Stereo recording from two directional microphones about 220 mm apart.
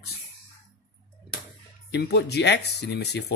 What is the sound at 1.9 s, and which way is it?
Speech, 50° left (ahead or behind).